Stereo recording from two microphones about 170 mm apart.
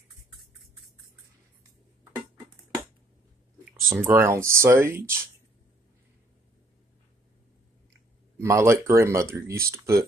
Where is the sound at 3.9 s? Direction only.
15° right (ahead or behind).